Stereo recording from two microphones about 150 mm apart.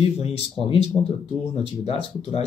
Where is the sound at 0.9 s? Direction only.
25° left (ahead or behind).